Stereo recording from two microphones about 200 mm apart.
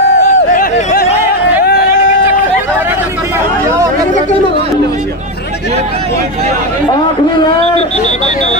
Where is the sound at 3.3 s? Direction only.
15° right (ahead or behind).